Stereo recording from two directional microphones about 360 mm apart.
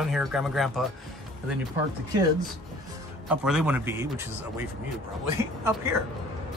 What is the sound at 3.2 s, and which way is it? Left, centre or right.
Speech, centre.